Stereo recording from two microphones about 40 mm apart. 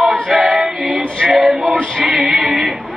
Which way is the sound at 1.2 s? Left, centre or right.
Centre.